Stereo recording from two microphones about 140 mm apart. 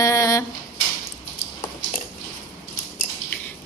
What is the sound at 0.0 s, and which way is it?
Drawer open or close, 25° left (ahead or behind).